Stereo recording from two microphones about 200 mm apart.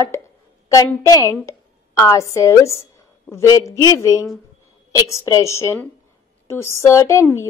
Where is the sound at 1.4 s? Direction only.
15° left (ahead or behind).